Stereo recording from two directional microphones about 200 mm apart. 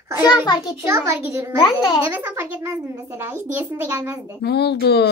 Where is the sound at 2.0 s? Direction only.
10° right (ahead or behind).